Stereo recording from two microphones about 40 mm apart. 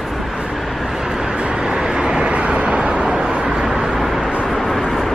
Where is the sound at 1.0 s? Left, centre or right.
Centre.